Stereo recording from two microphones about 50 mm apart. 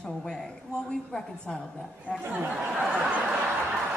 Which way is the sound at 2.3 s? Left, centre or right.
Right.